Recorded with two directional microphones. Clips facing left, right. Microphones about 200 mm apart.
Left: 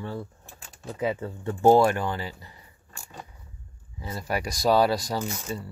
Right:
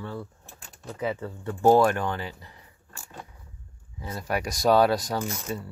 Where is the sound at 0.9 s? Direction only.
15° left (ahead or behind).